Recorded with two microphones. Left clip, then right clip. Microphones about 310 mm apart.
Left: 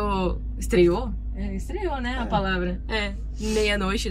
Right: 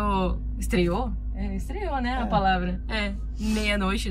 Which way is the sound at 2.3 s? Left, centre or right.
Centre.